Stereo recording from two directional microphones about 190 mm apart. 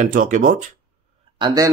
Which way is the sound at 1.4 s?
25° right (ahead or behind).